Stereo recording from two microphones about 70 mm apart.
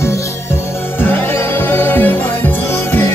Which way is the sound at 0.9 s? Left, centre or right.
Left.